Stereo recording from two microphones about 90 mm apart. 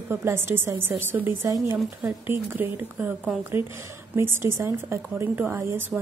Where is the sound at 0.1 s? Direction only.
25° right (ahead or behind).